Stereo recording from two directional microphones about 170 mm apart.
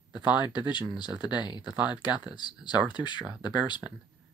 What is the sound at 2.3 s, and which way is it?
Speech, 25° left (ahead or behind).